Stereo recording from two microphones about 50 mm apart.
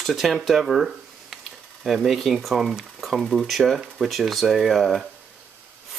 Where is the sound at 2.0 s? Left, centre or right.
Centre.